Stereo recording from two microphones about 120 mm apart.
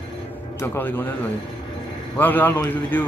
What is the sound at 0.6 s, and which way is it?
Speech, 15° left (ahead or behind).